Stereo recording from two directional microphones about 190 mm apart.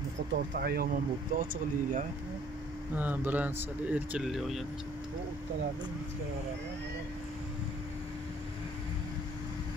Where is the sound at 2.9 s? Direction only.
10° right (ahead or behind).